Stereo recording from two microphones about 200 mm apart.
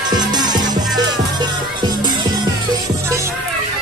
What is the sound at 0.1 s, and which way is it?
Music, 20° right (ahead or behind).